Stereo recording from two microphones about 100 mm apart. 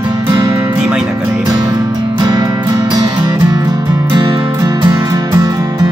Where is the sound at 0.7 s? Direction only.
10° right (ahead or behind).